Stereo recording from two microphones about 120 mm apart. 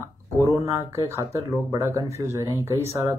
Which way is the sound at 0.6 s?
25° right (ahead or behind).